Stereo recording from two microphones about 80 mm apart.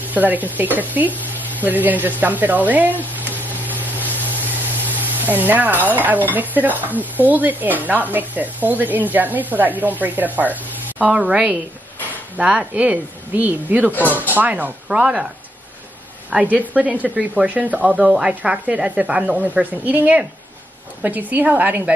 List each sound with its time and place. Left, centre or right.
0.0 s speech: right
3.8 s a sound: right
4.8 s speech: right
14.9 s speech: centre
16.3 s speech: centre